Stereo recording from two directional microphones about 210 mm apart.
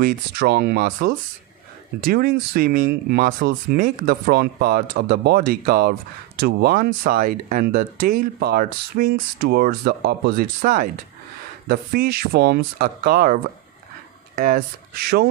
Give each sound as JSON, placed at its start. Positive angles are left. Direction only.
{"t": 0.0, "sound": "speech", "side_deg": -45}